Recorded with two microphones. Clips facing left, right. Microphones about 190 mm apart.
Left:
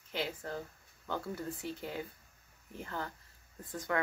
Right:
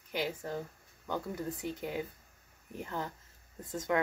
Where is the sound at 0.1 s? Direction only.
15° right (ahead or behind).